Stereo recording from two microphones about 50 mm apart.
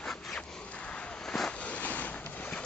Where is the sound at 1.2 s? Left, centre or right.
Centre.